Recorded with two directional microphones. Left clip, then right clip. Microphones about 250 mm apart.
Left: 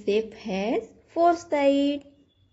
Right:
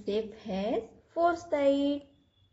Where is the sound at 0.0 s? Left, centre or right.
Left.